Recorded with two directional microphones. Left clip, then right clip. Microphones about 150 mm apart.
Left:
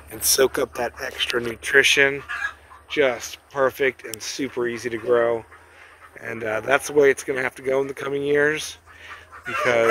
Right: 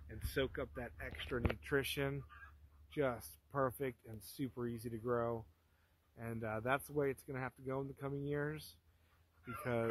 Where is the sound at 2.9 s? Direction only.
40° right (ahead or behind).